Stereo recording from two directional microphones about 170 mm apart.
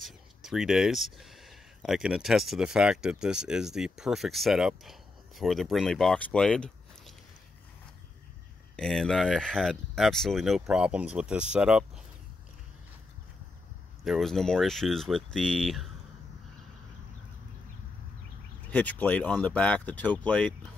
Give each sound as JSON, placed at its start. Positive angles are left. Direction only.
{"t": 0.0, "sound": "speech", "side_deg": 0}
{"t": 8.7, "sound": "speech", "side_deg": 5}
{"t": 14.0, "sound": "speech", "side_deg": 0}
{"t": 18.7, "sound": "speech", "side_deg": 10}